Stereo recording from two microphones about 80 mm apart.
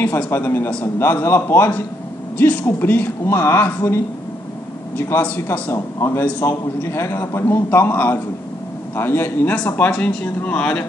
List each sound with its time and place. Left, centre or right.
0.3 s a man's voice: left
2.3 s speech: centre
5.2 s speech: left
5.7 s a man's voice: left; by 10.9 s centre